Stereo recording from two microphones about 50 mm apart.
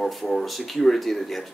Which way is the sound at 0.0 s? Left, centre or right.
Centre.